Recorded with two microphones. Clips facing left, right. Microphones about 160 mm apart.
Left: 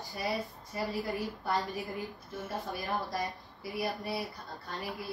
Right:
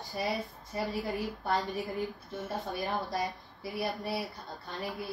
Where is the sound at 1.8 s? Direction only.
Centre (ahead or behind).